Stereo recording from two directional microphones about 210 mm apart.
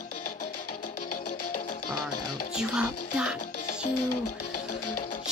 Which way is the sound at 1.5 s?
90° left.